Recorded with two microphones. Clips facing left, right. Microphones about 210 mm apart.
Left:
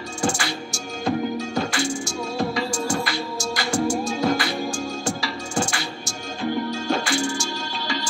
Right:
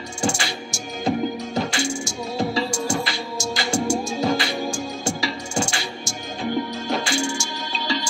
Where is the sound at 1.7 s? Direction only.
25° right (ahead or behind).